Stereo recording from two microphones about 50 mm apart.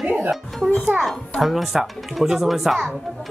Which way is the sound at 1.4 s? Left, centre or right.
Centre.